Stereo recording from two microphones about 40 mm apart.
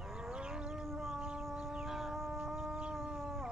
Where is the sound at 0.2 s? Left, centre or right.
Right.